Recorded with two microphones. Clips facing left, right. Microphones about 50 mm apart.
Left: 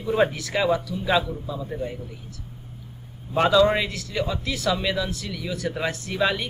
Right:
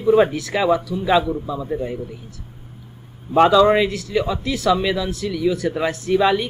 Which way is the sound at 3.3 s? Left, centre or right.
Centre.